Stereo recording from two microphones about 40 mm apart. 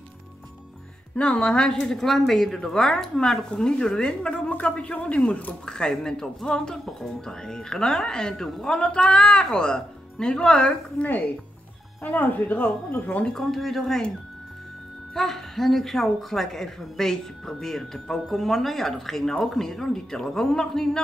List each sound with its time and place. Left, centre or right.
1.1 s speech: left
1.7 s a woman's voice: centre; by 5.5 s left
5.7 s a woman's voice: centre
11.0 s speech: left
13.3 s speech: centre
15.1 s a woman's voice: centre